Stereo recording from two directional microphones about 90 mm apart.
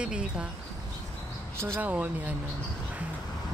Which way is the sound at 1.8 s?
15° right (ahead or behind).